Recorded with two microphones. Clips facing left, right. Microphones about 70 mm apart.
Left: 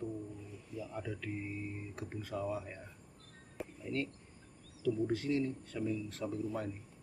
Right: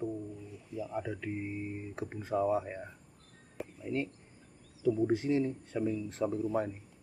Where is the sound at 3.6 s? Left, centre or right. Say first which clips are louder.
Right 2 dB; centre.